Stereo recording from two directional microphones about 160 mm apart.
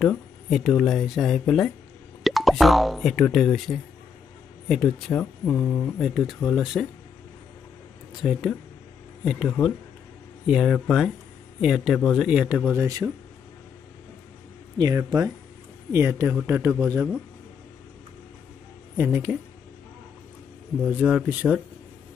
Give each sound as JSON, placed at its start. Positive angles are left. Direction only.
{"t": 0.0, "sound": "speech", "side_deg": 0}
{"t": 6.0, "sound": "speech", "side_deg": 0}
{"t": 8.2, "sound": "speech", "side_deg": 0}
{"t": 14.8, "sound": "speech", "side_deg": -25}
{"t": 18.9, "sound": "speech", "side_deg": -10}
{"t": 20.8, "sound": "speech", "side_deg": 5}